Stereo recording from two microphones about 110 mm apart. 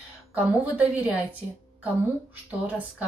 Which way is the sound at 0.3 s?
15° right (ahead or behind).